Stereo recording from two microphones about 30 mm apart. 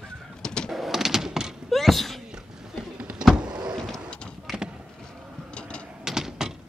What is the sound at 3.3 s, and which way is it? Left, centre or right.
Vehicle, right.